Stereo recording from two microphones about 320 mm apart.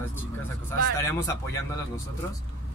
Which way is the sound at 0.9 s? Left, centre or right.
Centre.